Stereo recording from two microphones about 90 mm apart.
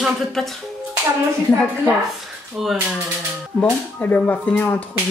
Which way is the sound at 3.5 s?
20° left (ahead or behind).